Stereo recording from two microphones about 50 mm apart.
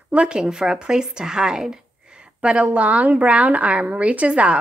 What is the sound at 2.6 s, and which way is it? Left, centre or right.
A woman's voice, right.